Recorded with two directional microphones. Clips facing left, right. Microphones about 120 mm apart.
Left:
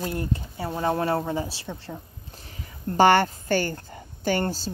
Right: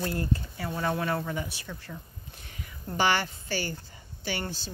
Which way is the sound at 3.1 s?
50° left (ahead or behind).